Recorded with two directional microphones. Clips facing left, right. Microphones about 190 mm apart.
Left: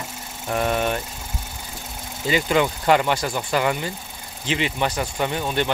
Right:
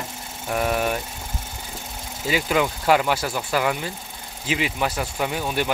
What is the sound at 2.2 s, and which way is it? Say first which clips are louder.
Speech: left 2 dB; 5° right (ahead or behind).